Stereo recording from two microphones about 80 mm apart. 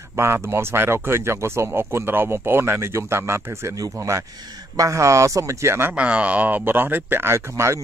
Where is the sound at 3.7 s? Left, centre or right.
Right.